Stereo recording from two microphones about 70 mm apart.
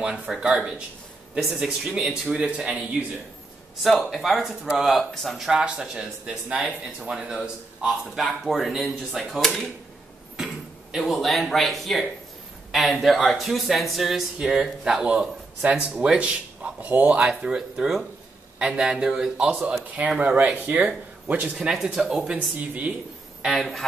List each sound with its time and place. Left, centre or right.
0.0 s speech: centre
3.8 s speech: centre
5.5 s speech: centre
8.2 s speech: centre
10.3 s speech: centre
17.2 s speech: centre
19.9 s speech: right
21.5 s speech: centre
22.6 s speech: right
23.4 s speech: centre